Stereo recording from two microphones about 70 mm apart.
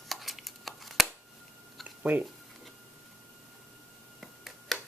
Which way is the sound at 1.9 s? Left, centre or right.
Right.